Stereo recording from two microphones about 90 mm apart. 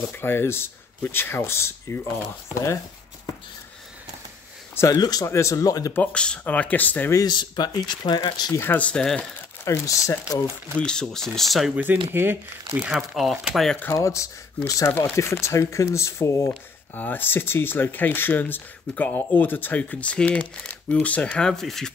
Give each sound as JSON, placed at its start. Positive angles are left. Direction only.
{"t": 0.1, "sound": "speech", "side_deg": 25}
{"t": 4.7, "sound": "speech", "side_deg": 30}
{"t": 5.9, "sound": "speech", "side_deg": 10}
{"t": 7.2, "sound": "speech", "side_deg": 50}
{"t": 8.5, "sound": "speech", "side_deg": 20}
{"t": 9.7, "sound": "speech", "side_deg": 35}
{"t": 10.8, "sound": "speech", "side_deg": 10}
{"t": 11.7, "sound": "speech", "side_deg": -20}
{"t": 12.9, "sound": "speech", "side_deg": 0}
{"t": 13.9, "sound": "speech", "side_deg": 35}
{"t": 14.9, "sound": "speech", "side_deg": 20}
{"t": 16.9, "sound": "speech", "side_deg": 20}
{"t": 21.5, "sound": "speech", "side_deg": 5}